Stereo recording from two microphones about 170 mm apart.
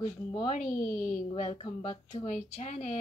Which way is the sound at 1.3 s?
40° left (ahead or behind).